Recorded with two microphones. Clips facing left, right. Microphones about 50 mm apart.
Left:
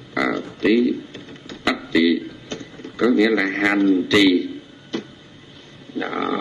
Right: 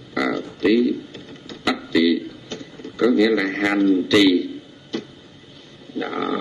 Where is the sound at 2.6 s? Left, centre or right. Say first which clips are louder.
Right 1 dB; centre.